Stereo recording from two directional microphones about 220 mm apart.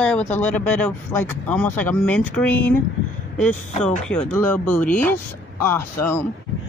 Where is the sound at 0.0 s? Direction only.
5° left (ahead or behind).